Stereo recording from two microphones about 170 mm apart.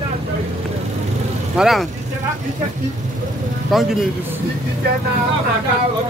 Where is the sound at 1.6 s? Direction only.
Centre (ahead or behind).